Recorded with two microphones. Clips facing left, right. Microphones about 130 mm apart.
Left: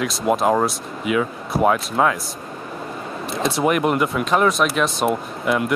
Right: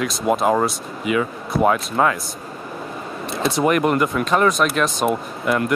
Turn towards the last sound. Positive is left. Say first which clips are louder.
# even
turn(degrees=0)  # may be behind; listen again after turning